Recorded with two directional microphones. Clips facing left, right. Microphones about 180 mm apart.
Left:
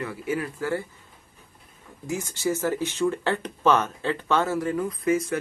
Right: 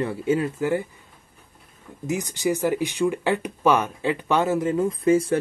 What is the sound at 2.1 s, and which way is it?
Speech, 15° right (ahead or behind).